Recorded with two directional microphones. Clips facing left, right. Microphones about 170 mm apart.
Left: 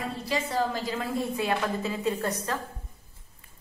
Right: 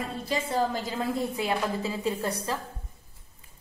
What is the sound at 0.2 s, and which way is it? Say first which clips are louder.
Speech: right 1 dB; 25° right (ahead or behind).